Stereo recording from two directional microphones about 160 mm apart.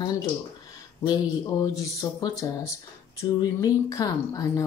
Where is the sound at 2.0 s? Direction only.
25° left (ahead or behind).